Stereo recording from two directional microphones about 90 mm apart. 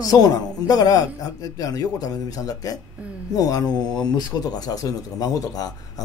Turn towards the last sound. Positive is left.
turn(degrees=45)  # may be behind; listen again after turning